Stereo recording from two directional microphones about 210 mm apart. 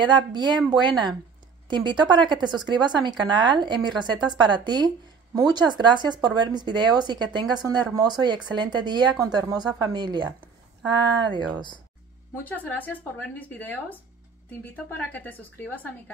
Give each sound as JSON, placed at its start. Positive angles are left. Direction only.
{"t": 0.0, "sound": "speech", "side_deg": -20}
{"t": 12.4, "sound": "speech", "side_deg": 10}